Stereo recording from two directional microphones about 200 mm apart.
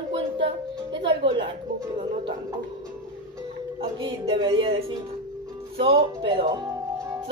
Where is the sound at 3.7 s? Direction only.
25° right (ahead or behind).